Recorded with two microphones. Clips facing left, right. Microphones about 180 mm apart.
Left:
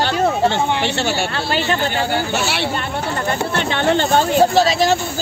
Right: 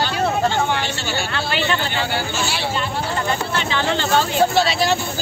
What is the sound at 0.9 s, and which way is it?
Speech, 65° left (ahead or behind).